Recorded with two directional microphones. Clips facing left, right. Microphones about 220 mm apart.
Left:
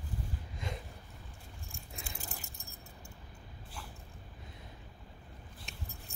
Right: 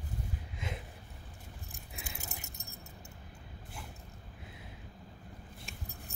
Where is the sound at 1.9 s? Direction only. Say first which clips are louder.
Even; 5° right (ahead or behind).